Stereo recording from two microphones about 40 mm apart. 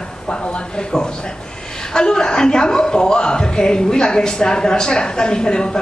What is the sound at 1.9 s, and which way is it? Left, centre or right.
Speech, centre.